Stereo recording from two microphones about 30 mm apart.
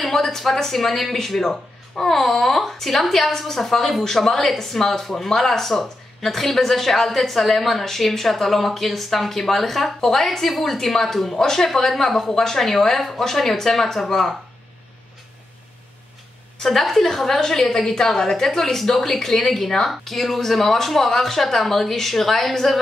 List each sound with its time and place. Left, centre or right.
0.0 s speech: centre
16.5 s speech: centre